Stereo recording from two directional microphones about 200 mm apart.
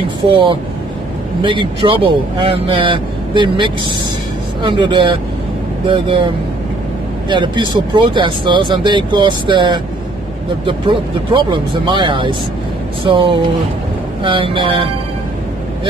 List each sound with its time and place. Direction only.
0.3 s speech: 25° right (ahead or behind)